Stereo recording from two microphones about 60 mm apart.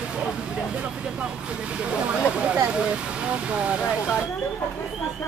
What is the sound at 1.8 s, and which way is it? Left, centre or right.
Speech, centre.